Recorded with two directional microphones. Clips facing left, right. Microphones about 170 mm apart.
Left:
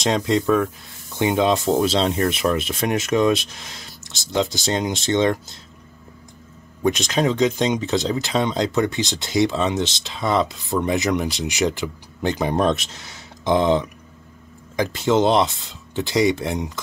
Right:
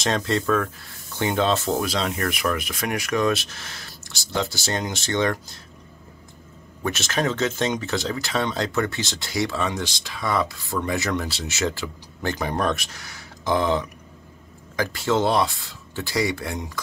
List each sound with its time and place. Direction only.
0.0 s speech: 15° left (ahead or behind)
6.8 s speech: 15° left (ahead or behind)